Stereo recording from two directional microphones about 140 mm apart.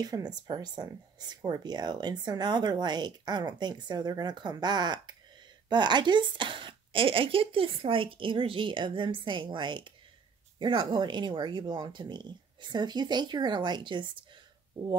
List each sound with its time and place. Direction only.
0.0 s speech: 25° right (ahead or behind)